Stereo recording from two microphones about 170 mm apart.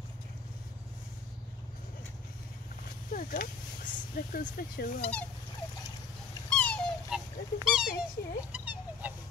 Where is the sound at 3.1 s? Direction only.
60° left (ahead or behind).